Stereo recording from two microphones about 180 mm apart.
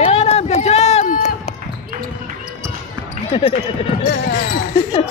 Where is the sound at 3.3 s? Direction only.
30° left (ahead or behind).